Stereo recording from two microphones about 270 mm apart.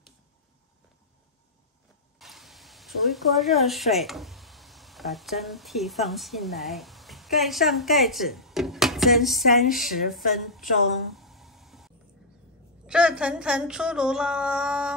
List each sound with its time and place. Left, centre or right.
2.1 s speech: centre
9.8 s a woman's voice: left
10.3 s a sound: centre
12.8 s speech: centre